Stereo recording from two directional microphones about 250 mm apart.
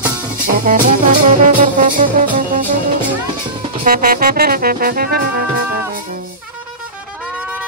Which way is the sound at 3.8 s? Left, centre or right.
Right.